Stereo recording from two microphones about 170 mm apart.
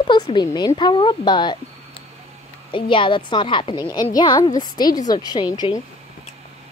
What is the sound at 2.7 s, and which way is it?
Speech, 30° left (ahead or behind).